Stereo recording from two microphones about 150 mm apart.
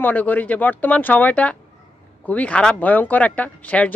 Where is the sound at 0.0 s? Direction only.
10° left (ahead or behind).